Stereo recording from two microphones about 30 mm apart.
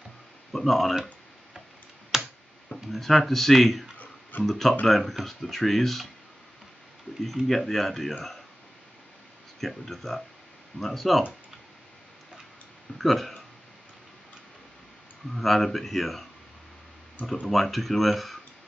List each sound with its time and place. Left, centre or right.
0.7 s speech: centre
2.1 s computer keyboard: centre
2.9 s speech: centre
4.0 s guitar: left
4.5 s speech: centre
7.4 s speech: centre
9.6 s speech: centre
12.9 s speech: centre
15.3 s speech: centre
17.5 s speech: centre